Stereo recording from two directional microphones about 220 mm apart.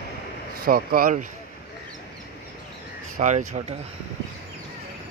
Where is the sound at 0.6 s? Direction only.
40° right (ahead or behind).